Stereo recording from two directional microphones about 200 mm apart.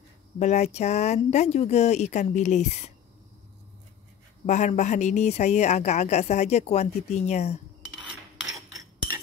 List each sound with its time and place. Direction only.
0.4 s a woman's voice: 35° left (ahead or behind)
4.5 s a woman's voice: 35° left (ahead or behind)